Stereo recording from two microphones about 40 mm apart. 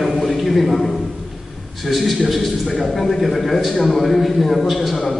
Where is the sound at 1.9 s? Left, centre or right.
Centre.